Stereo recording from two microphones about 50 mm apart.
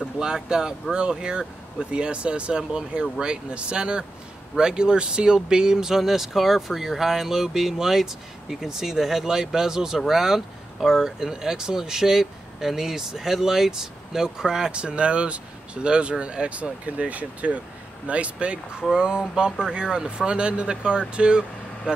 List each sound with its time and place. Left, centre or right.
0.2 s speech: centre